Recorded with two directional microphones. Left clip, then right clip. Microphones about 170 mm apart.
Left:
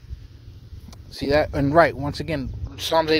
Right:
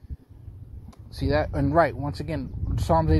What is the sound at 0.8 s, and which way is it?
Speech, 35° left (ahead or behind).